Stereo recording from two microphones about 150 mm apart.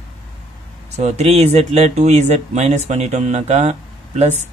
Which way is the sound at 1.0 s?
45° right (ahead or behind).